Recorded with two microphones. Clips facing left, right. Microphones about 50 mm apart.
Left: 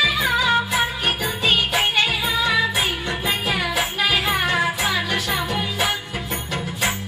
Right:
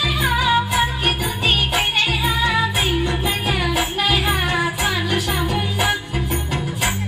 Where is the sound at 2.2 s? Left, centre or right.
Right.